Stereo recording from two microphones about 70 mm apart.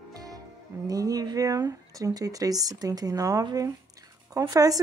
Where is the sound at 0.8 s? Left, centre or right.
Right.